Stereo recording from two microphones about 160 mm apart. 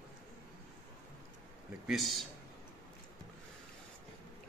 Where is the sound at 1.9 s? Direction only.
Centre (ahead or behind).